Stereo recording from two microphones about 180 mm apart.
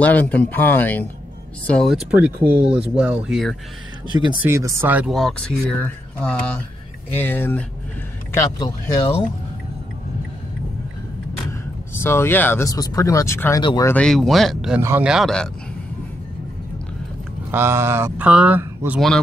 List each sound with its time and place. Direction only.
0.0 s speech: 10° left (ahead or behind)
2.0 s speech: 10° right (ahead or behind)
4.4 s speech: 15° right (ahead or behind)
5.1 s speech: 5° left (ahead or behind); by 9.0 s 20° left (ahead or behind)
11.9 s speech: 10° left (ahead or behind)
14.8 s speech: 10° right (ahead or behind)
17.5 s speech: 15° right (ahead or behind)